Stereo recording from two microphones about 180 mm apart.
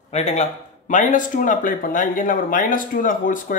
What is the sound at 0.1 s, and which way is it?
Speech, 35° left (ahead or behind).